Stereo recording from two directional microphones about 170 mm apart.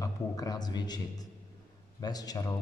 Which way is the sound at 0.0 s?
20° left (ahead or behind).